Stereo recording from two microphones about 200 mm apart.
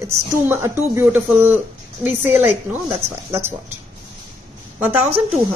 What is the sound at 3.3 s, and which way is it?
Speech, 10° right (ahead or behind).